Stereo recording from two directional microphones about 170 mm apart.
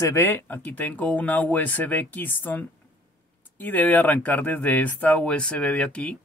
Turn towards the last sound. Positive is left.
turn(degrees=5)  # may be behind; listen again after turning